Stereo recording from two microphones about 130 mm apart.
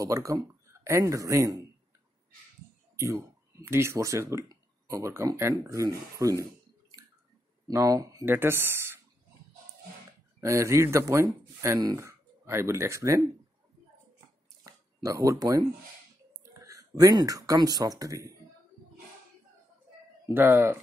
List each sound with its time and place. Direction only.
0.0 s speech: 25° right (ahead or behind)
3.0 s speech: 20° right (ahead or behind)
7.6 s speech: 25° right (ahead or behind)
10.4 s speech: 20° right (ahead or behind)
14.6 s a sound: 25° right (ahead or behind)
16.4 s speech: 25° right (ahead or behind)
20.2 s speech: 20° right (ahead or behind)